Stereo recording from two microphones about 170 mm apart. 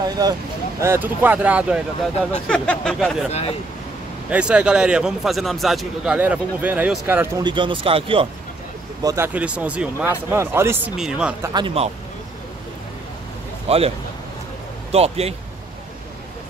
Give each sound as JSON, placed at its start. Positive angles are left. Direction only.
{"t": 0.2, "sound": "speech", "side_deg": -20}
{"t": 2.3, "sound": "a man's voice", "side_deg": 5}
{"t": 3.3, "sound": "speech", "side_deg": 40}
{"t": 4.3, "sound": "a man's voice", "side_deg": -5}
{"t": 7.4, "sound": "speech", "side_deg": -30}
{"t": 9.0, "sound": "speech", "side_deg": -15}
{"t": 11.5, "sound": "speech", "side_deg": -30}
{"t": 13.7, "sound": "a man's voice", "side_deg": -35}